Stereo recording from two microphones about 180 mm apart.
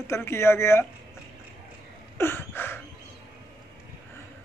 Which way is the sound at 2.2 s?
10° left (ahead or behind).